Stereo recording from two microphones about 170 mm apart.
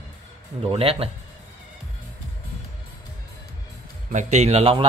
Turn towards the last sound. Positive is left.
turn(degrees=-35)  # may be behind; listen again after turning